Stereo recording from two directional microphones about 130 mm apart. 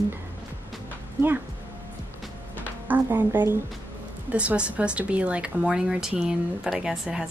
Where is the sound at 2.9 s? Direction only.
15° right (ahead or behind).